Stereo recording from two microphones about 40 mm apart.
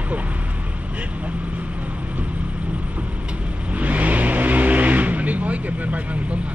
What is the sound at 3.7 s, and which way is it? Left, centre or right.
Vehicle, right.